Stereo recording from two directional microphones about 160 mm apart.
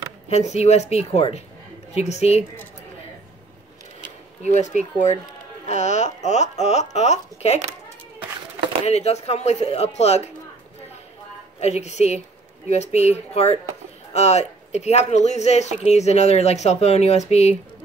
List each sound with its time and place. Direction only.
0.3 s speech: 45° left (ahead or behind)
4.4 s speech: 45° left (ahead or behind)
8.8 s speech: 45° left (ahead or behind)
11.6 s speech: 45° left (ahead or behind)